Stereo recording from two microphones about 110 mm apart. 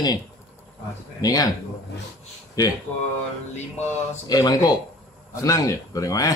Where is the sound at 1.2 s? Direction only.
35° left (ahead or behind).